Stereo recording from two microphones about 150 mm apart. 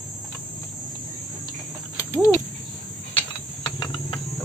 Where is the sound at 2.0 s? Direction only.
20° left (ahead or behind).